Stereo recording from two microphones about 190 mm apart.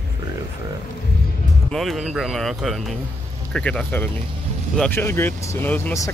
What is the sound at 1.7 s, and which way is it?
Speech, centre (ahead or behind).